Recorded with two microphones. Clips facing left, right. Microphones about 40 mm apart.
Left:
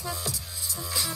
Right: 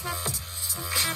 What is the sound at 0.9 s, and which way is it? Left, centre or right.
Music, right.